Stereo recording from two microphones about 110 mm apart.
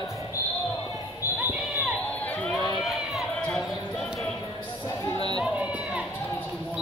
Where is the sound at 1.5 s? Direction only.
5° right (ahead or behind).